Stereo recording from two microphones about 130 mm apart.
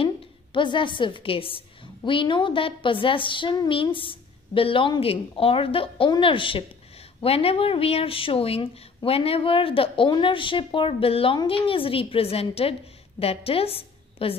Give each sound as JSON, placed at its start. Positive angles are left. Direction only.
{"t": 0.0, "sound": "a woman's voice", "side_deg": 40}